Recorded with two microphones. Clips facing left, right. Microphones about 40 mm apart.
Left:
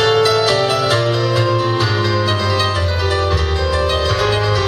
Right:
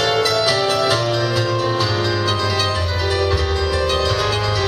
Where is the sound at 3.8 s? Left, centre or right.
Centre.